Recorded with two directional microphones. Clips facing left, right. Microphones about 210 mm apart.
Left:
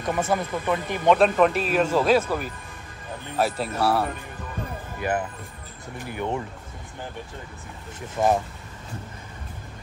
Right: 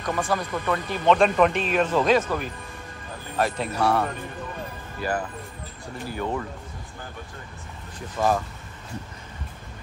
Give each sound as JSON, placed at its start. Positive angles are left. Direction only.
{"t": 0.0, "sound": "speech", "side_deg": 20}
{"t": 1.1, "sound": "a man's voice", "side_deg": 0}
{"t": 6.0, "sound": "speech", "side_deg": 20}
{"t": 8.2, "sound": "speech", "side_deg": 20}